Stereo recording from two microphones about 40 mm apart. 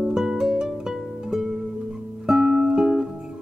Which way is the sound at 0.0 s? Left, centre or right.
Centre.